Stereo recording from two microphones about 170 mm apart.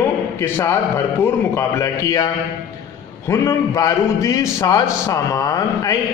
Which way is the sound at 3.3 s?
20° left (ahead or behind).